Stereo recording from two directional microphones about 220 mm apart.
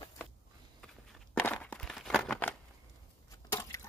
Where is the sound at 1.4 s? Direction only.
5° left (ahead or behind).